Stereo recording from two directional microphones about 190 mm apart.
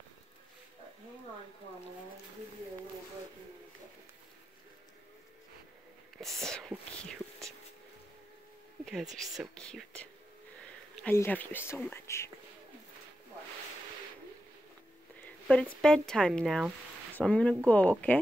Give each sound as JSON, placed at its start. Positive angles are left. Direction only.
{"t": 6.1, "sound": "speech", "side_deg": 0}
{"t": 8.8, "sound": "speech", "side_deg": 0}
{"t": 11.1, "sound": "speech", "side_deg": 10}
{"t": 15.2, "sound": "speech", "side_deg": 5}